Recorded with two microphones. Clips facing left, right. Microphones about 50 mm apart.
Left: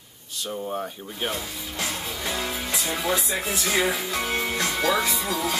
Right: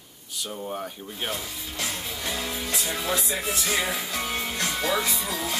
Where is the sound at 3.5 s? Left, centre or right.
Centre.